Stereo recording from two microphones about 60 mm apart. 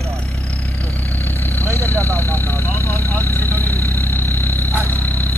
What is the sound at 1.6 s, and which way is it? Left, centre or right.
Vehicle, right.